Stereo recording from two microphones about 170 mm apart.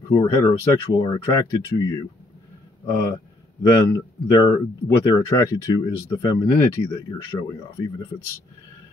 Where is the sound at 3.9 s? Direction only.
20° left (ahead or behind).